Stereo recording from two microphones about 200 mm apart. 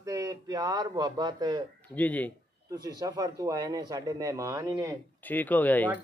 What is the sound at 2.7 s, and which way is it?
Speech, 20° right (ahead or behind).